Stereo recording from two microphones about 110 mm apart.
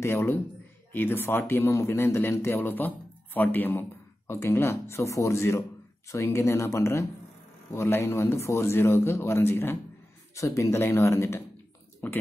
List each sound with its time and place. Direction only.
0.0 s a man's voice: 25° left (ahead or behind)